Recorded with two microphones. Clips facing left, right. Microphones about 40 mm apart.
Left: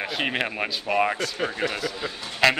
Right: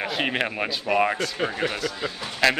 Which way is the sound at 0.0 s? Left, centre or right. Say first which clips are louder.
Right 1 dB; centre.